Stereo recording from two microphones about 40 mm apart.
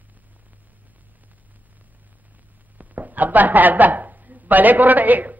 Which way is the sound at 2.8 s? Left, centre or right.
Right.